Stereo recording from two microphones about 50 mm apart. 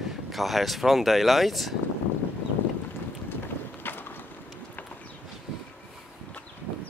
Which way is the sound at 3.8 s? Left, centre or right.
Left.